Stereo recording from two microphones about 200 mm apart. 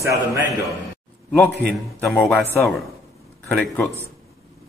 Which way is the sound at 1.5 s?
55° right (ahead or behind).